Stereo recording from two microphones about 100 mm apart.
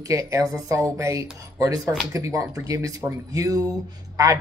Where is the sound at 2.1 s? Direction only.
35° right (ahead or behind).